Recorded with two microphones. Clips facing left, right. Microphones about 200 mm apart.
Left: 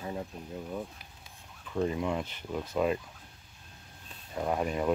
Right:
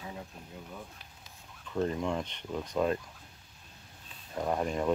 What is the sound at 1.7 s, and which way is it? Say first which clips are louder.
Speech: left 1 dB; 5° left (ahead or behind).